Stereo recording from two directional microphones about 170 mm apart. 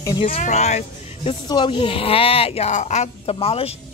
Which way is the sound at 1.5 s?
25° left (ahead or behind).